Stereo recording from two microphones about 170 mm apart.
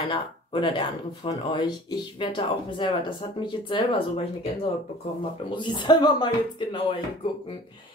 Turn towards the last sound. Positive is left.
turn(degrees=30)  # may be behind; listen again after turning